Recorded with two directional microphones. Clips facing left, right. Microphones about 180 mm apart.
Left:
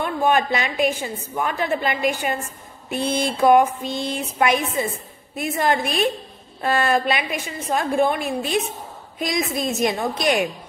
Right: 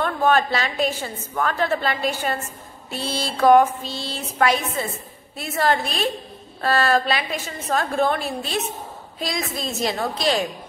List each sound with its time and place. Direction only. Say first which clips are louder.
0.0 s a woman's voice: even; 15° left (ahead or behind)